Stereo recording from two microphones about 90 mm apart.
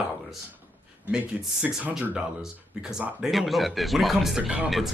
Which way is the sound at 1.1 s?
10° right (ahead or behind).